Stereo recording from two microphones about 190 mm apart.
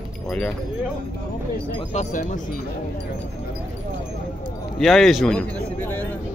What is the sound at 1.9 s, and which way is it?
Speech, 40° left (ahead or behind).